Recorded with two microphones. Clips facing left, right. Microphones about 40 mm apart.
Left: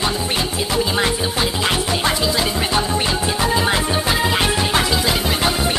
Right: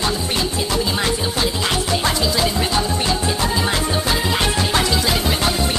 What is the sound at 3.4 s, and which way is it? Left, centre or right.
Music, centre.